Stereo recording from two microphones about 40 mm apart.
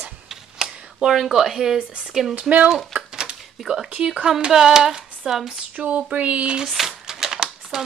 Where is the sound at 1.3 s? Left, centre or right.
Centre.